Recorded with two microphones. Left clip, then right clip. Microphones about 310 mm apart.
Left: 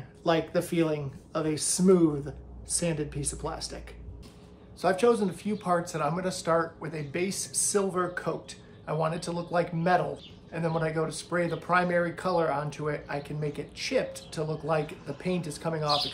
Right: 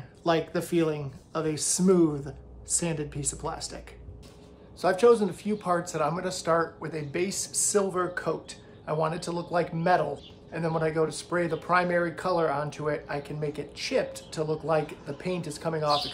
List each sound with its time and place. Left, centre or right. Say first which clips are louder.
0.2 s speech: even; centre
4.8 s speech: right 3 dB; centre